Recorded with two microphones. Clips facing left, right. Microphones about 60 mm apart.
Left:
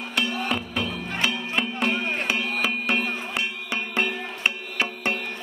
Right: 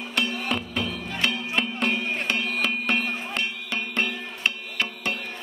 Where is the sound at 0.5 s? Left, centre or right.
Centre.